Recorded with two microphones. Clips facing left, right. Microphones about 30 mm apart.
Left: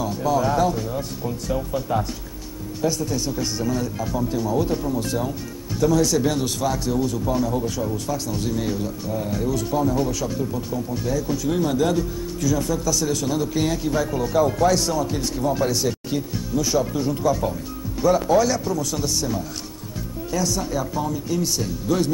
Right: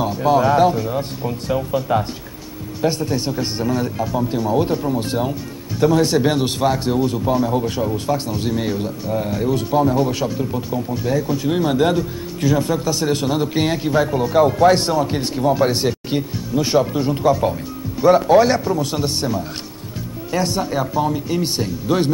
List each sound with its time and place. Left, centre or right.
0.2 s speech: right
4.0 s speech: right
4.5 s speech: right